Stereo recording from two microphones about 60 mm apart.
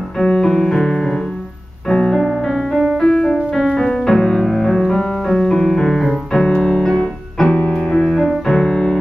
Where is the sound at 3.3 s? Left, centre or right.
Centre.